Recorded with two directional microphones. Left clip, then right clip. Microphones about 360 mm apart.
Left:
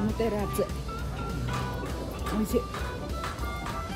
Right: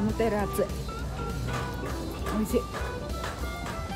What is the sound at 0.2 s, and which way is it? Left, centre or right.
Speech, centre.